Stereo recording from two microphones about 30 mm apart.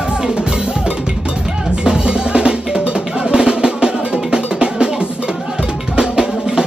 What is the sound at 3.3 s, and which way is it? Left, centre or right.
Music, right.